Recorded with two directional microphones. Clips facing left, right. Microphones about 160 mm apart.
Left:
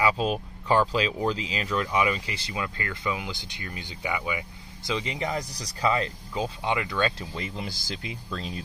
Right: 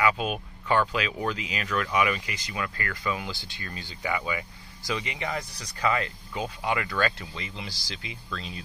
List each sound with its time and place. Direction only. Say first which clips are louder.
0.0 s speech: left 1 dB; 30° left (ahead or behind); by 4.9 s 15° left (ahead or behind)
4.9 s speech: left 3 dB; 30° left (ahead or behind)
7.2 s speech: left 4 dB; 45° left (ahead or behind)